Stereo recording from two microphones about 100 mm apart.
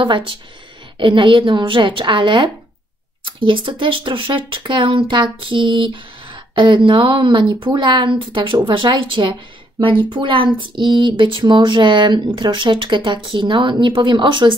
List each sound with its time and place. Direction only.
0.0 s speech: 60° right (ahead or behind)